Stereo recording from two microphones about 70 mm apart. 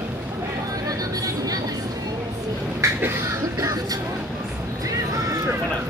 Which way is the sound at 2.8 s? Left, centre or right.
Right.